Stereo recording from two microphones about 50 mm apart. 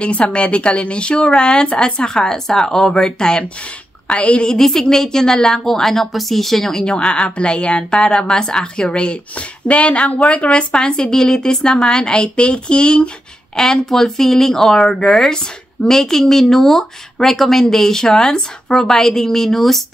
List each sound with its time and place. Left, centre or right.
0.0 s speech: left
4.5 s speech: centre